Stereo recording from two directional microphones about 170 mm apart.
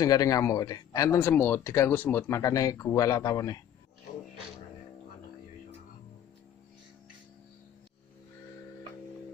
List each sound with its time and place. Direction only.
0.0 s speech: 20° left (ahead or behind)